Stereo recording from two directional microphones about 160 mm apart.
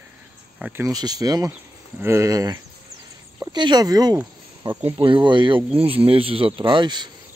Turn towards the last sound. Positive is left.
turn(degrees=-25)  # may be behind; listen again after turning